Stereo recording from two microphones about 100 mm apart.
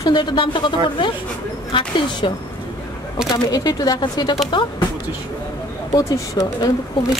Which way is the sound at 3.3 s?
40° left (ahead or behind).